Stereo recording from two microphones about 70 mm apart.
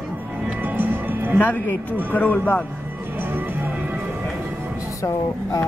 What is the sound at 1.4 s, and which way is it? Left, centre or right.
Speech, left.